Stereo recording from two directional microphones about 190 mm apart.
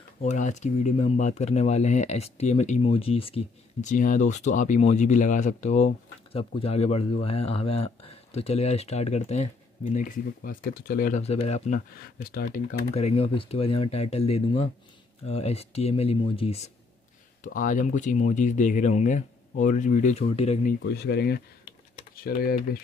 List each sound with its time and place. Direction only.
0.2 s speech: 40° left (ahead or behind)
9.9 s speech: 45° left (ahead or behind)
12.3 s speech: 50° left (ahead or behind); by 16.7 s 30° left (ahead or behind)
17.4 s speech: 45° left (ahead or behind)
20.9 s speech: 60° left (ahead or behind)